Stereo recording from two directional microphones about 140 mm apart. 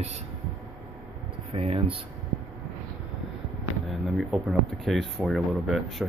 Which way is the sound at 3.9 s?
Centre (ahead or behind).